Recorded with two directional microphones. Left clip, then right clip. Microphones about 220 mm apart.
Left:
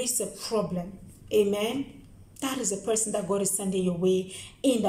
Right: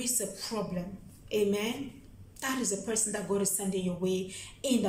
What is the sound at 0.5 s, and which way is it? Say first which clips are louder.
A woman's voice: left 7 dB; 25° left (ahead or behind).